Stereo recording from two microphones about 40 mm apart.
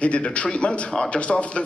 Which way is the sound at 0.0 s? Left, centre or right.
Left.